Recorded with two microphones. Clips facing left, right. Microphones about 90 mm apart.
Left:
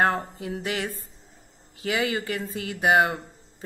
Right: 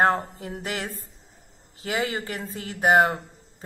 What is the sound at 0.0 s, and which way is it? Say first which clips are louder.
A woman's voice: right 2 dB; 35° right (ahead or behind).